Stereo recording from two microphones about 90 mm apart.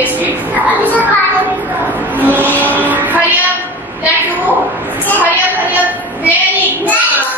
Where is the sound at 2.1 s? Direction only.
20° right (ahead or behind).